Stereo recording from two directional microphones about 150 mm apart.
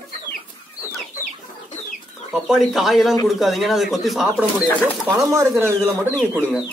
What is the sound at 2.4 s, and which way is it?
Speech, centre (ahead or behind).